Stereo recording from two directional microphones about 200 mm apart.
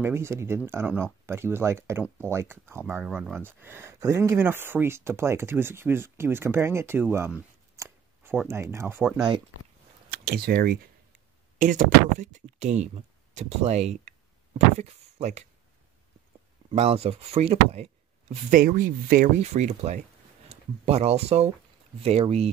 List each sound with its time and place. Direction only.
0.0 s speech: 15° right (ahead or behind)
7.7 s a sound: 10° right (ahead or behind)
10.0 s speech: 50° right (ahead or behind); by 15.4 s 35° right (ahead or behind)
16.7 s speech: 30° right (ahead or behind)
18.3 s speech: 45° right (ahead or behind)